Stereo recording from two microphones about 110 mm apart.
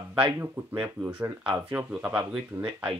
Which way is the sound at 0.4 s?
20° right (ahead or behind).